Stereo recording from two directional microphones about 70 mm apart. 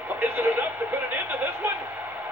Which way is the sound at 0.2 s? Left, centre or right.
Right.